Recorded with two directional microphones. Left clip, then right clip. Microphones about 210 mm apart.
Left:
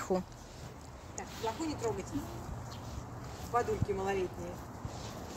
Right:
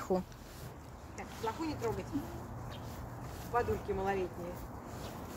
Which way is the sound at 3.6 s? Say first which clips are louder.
Left 1 dB; 25° left (ahead or behind).